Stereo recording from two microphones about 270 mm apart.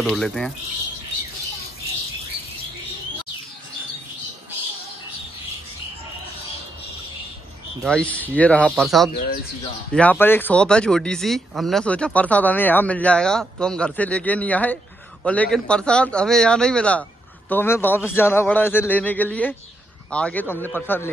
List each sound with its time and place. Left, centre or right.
0.0 s speech: centre
7.8 s a man's voice: centre